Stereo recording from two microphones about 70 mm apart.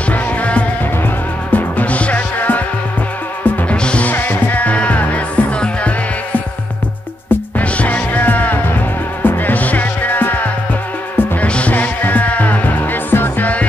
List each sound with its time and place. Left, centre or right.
0.1 s music: centre
4.1 s music: left
7.2 s music: left